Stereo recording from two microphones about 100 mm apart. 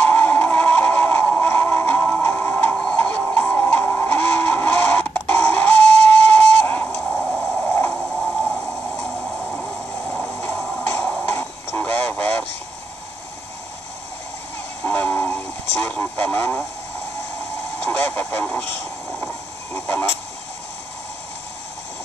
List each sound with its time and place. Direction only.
0.0 s music: 15° left (ahead or behind)
6.3 s a sound: 15° left (ahead or behind); by 7.6 s centre (ahead or behind)
7.6 s a sound: 20° left (ahead or behind)
7.9 s a sound: 5° right (ahead or behind)
10.9 s music: 20° left (ahead or behind)
11.2 s radio: 15° left (ahead or behind)
14.8 s radio: 15° left (ahead or behind)
17.8 s radio: 15° left (ahead or behind)
19.7 s honk: 20° left (ahead or behind)